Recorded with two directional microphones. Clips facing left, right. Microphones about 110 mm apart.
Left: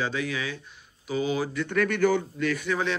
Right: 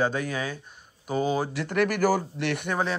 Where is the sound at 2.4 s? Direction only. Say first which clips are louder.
Left 1 dB; 65° right (ahead or behind).